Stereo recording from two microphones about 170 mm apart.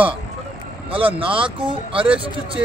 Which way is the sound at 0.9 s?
30° right (ahead or behind).